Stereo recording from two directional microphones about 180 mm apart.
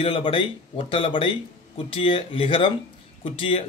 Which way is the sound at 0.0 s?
30° left (ahead or behind).